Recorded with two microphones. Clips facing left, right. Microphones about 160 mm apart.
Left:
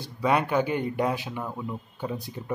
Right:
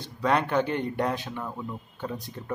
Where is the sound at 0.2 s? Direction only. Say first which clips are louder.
Left 1 dB; 10° left (ahead or behind).